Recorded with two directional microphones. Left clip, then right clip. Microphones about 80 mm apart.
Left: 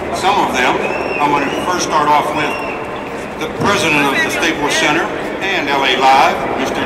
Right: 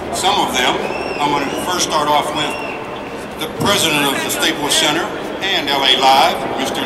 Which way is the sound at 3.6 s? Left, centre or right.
Right.